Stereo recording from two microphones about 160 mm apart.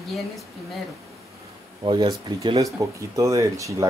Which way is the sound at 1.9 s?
30° right (ahead or behind).